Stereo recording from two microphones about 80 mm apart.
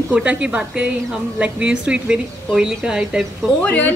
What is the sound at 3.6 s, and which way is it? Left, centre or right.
Speech, left.